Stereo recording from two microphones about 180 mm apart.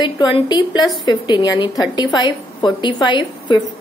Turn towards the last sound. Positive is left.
turn(degrees=25)  # may be behind; listen again after turning